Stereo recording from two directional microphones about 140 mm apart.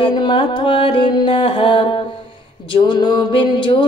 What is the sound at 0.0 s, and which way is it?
Music, 35° left (ahead or behind).